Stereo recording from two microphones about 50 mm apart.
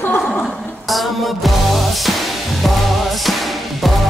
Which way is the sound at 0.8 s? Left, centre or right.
Centre.